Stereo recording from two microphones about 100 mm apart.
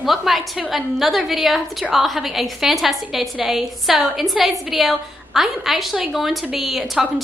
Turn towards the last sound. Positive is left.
turn(degrees=0)  # may be behind; listen again after turning